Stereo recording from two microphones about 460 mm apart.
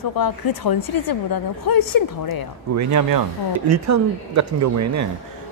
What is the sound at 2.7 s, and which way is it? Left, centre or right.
A man's voice, right.